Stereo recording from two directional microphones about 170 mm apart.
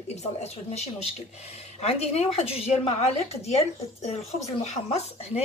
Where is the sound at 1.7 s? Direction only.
40° left (ahead or behind).